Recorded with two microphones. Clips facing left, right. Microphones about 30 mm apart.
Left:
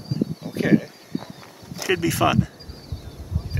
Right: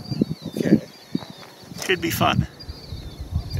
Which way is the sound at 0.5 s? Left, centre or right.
Left.